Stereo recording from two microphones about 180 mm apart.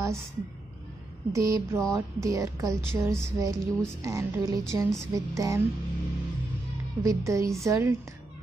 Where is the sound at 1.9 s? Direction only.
15° right (ahead or behind).